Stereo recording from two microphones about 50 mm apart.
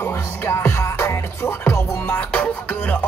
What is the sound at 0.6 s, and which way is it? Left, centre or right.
Music, left.